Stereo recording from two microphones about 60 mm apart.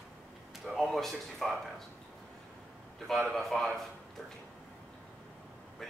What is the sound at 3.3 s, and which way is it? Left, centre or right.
Speech, centre.